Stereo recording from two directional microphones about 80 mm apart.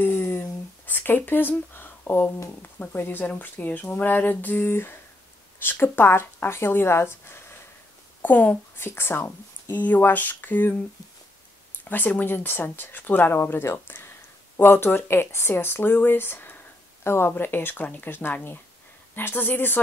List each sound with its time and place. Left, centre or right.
0.0 s a sound: left
2.6 s speech: left
8.2 s a woman's voice: centre
11.9 s speech: left